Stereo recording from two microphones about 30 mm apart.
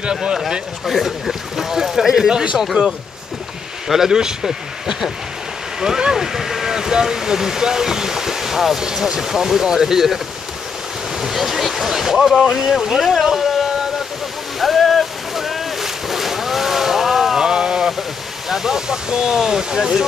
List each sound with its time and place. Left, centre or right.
0.0 s speech: right
0.8 s speech: centre; by 4.4 s right
5.8 s speech: right; by 13.7 s centre
14.6 s boat: centre
17.4 s a sound: right
18.5 s speech: centre